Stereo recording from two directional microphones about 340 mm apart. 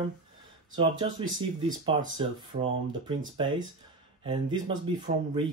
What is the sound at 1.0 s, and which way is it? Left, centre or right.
Speech, centre.